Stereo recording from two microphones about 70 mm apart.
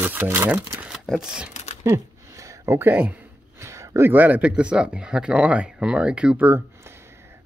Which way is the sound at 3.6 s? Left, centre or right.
Right.